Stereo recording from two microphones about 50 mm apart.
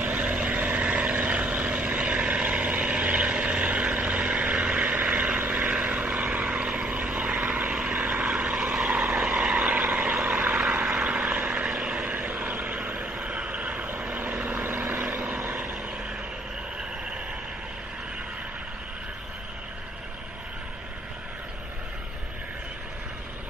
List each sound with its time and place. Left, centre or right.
0.0 s vehicle: right; by 12.1 s centre
12.3 s vehicle: right
14.6 s vehicle: right